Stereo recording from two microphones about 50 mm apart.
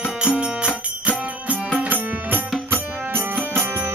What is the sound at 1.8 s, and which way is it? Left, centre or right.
Music, right.